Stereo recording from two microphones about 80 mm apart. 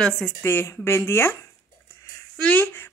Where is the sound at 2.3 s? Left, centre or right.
Centre.